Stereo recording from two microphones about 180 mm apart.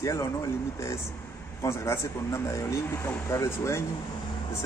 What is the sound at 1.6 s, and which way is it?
Speech, 15° left (ahead or behind).